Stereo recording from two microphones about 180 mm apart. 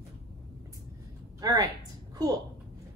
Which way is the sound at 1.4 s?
20° right (ahead or behind).